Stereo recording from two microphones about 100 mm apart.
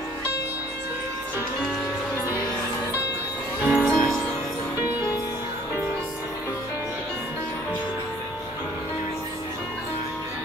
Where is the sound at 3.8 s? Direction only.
10° left (ahead or behind).